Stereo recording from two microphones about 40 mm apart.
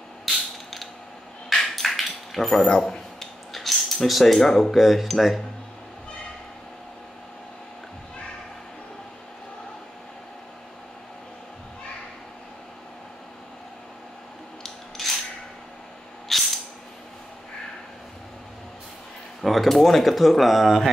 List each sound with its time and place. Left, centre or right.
0.2 s mechanisms: centre
1.5 s a sound: centre
3.5 s speech: centre
15.0 s cap gun: centre
16.3 s a sound: centre
19.4 s speech: centre